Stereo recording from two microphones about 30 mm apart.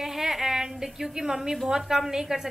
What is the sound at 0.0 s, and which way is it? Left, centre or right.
A woman's voice, centre.